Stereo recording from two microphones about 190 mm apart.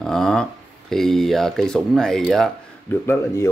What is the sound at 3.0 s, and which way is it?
Speech, 15° left (ahead or behind).